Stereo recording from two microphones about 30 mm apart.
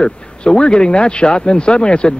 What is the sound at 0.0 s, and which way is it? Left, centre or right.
Speech, left.